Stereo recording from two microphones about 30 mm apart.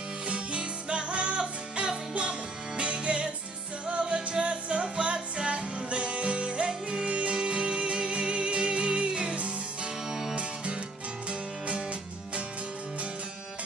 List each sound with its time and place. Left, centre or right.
0.3 s music: right
6.7 s music: right
7.1 s music: right
7.3 s music: right
10.0 s music: centre
11.2 s music: right